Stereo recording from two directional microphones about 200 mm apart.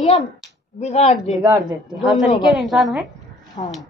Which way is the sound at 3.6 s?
30° left (ahead or behind).